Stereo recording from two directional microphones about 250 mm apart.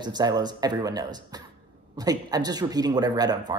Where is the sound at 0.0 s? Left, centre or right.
Centre.